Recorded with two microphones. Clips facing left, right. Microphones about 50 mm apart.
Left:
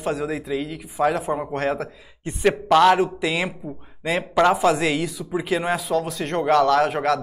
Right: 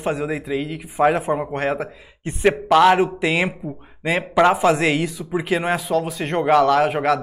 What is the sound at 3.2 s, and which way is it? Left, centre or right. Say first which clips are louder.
Speech: right 4 dB; right.